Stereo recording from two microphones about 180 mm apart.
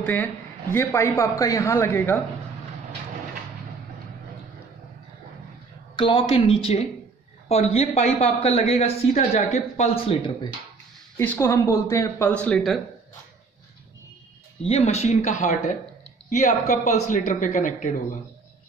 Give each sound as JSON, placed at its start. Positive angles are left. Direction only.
{"t": 0.0, "sound": "a man's voice", "side_deg": 10}
{"t": 5.9, "sound": "speech", "side_deg": 30}
{"t": 11.1, "sound": "a man's voice", "side_deg": 15}
{"t": 14.6, "sound": "speech", "side_deg": 35}